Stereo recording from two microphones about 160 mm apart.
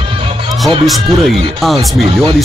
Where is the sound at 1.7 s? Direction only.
35° right (ahead or behind).